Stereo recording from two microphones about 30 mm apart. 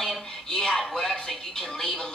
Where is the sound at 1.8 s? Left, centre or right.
Left.